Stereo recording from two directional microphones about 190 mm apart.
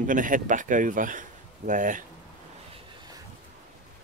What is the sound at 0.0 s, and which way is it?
Speech, 45° right (ahead or behind).